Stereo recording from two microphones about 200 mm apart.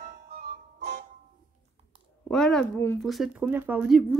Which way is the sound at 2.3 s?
5° left (ahead or behind).